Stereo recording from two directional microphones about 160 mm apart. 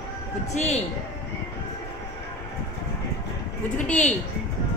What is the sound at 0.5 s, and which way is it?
Speech, 45° left (ahead or behind).